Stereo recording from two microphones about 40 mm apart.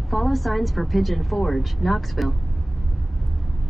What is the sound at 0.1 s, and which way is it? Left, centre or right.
A woman's voice, centre.